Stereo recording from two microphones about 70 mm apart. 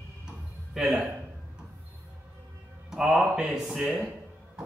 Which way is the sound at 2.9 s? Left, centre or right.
Centre.